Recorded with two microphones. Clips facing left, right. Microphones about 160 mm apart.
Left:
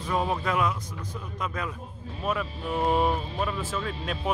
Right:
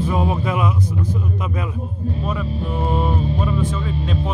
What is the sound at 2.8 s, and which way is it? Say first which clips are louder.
Speech: right 2 dB; 5° left (ahead or behind).